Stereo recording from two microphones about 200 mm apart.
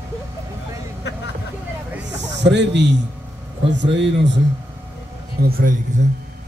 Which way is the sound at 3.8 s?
65° right (ahead or behind).